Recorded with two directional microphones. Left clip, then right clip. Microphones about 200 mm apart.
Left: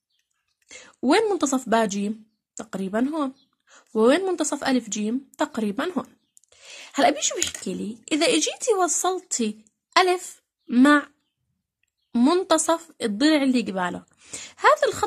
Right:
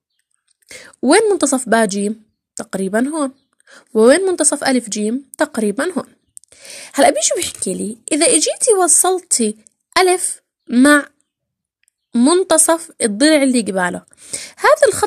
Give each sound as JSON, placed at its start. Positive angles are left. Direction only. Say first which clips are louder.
{"t": 0.7, "sound": "a woman's voice", "louder": "right 8 dB", "side_deg": -30}